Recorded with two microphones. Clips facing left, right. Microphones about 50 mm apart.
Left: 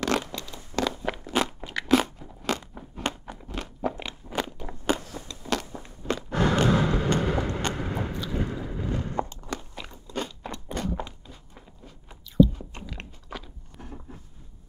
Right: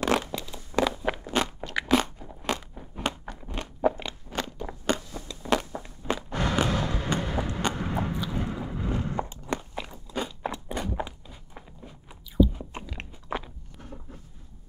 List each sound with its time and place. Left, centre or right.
0.3 s walk: centre
1.8 s crunch: centre
4.8 s a sound: centre
5.4 s walk: centre
6.0 s a sound: centre
7.6 s clip-clop: centre
8.1 s walk: centre
9.8 s crunch: centre
10.4 s walk: centre
12.1 s biting: centre
13.3 s walk: right